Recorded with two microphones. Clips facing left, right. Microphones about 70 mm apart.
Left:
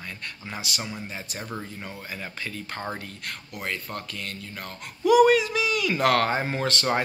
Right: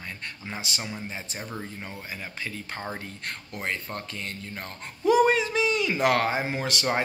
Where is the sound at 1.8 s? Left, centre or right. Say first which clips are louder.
Left 1 dB; right.